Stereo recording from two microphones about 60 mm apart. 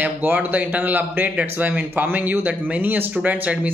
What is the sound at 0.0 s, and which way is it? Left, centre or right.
Speech, right.